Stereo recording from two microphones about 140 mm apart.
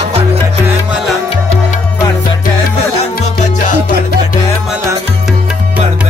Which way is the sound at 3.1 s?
80° left.